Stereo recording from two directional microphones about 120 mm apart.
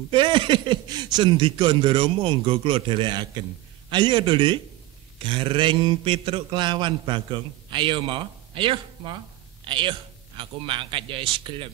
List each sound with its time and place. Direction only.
0.1 s a man's voice: 45° right (ahead or behind)